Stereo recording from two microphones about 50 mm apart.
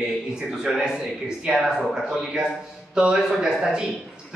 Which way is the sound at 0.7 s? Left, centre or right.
Centre.